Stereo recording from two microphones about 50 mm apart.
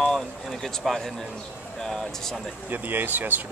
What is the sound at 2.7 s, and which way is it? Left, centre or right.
Speech, right.